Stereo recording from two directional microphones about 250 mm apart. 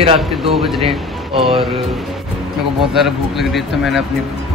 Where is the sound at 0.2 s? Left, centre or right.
Centre.